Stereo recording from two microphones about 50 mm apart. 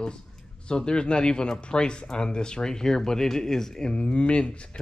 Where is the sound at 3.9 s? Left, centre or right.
Left.